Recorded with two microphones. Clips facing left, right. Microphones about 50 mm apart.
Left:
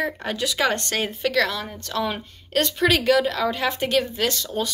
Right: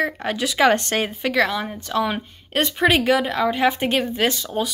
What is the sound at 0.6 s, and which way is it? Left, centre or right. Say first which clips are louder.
A woman's voice: right 7 dB; right.